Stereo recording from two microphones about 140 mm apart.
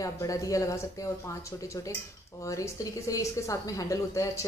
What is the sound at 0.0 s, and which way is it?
Speech, 25° left (ahead or behind).